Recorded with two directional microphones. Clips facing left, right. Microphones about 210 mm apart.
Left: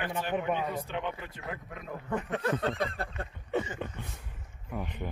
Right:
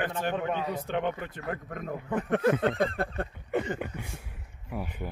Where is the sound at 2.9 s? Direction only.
60° right (ahead or behind).